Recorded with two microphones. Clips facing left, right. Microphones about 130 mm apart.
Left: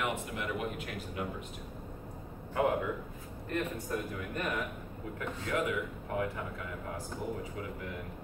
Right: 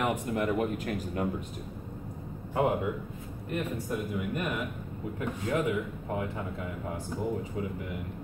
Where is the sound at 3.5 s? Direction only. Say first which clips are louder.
Right 2 dB; 15° right (ahead or behind).